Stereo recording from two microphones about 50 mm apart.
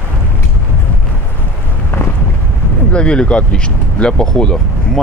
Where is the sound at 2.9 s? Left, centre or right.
Left.